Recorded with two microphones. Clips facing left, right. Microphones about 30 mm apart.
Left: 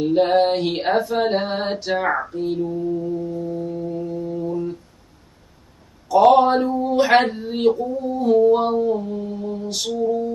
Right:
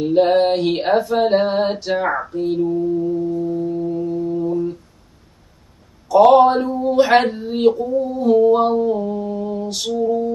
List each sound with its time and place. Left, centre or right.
0.0 s speech: centre
2.0 s mantra: centre
6.0 s speech: centre